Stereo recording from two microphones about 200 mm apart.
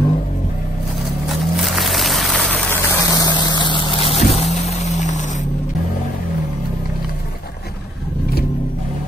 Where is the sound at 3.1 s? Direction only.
20° left (ahead or behind); by 5.2 s 35° left (ahead or behind).